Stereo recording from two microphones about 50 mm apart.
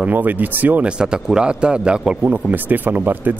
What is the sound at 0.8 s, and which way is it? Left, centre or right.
A man's voice, centre.